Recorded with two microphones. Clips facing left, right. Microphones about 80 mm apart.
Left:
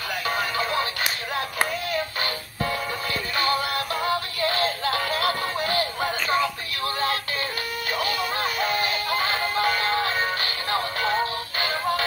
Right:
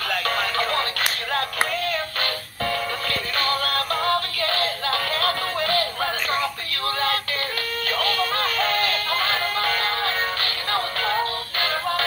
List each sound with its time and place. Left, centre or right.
0.1 s music: centre
1.9 s music: centre
7.9 s music: centre